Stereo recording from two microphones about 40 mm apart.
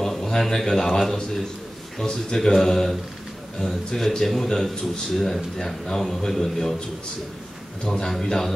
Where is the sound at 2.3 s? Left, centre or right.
Centre.